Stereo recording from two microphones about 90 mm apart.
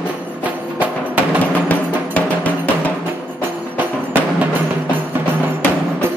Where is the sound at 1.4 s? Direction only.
20° left (ahead or behind).